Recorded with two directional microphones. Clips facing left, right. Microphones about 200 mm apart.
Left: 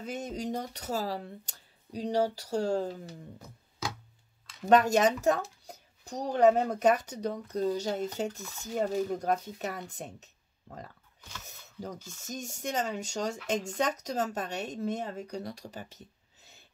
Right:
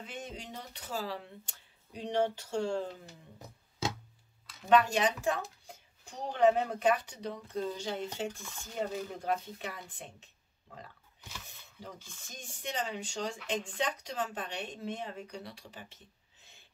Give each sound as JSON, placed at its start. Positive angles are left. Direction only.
{"t": 0.0, "sound": "speech", "side_deg": 40}
{"t": 4.6, "sound": "speech", "side_deg": 45}
{"t": 12.0, "sound": "speech", "side_deg": 45}